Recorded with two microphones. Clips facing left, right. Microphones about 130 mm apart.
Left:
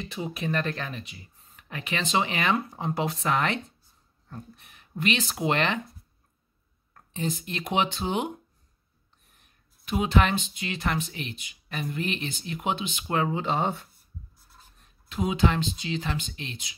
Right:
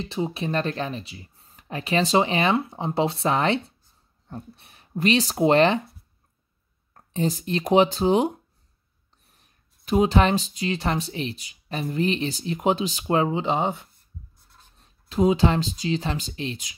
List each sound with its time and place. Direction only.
0.0 s speech: 30° right (ahead or behind)
6.9 s speech: 35° right (ahead or behind)
9.3 s speech: 35° right (ahead or behind)
13.1 s speech: 25° right (ahead or behind)
14.3 s writing: 5° left (ahead or behind)
14.8 s speech: 35° right (ahead or behind)